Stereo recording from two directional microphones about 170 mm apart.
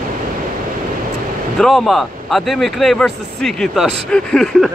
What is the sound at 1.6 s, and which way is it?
Speech, centre (ahead or behind).